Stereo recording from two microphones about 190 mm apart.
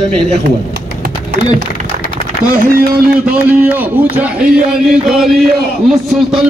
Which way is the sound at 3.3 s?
10° right (ahead or behind).